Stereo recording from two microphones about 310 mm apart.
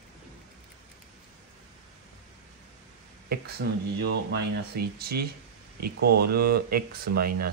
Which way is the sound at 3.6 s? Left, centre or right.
Right.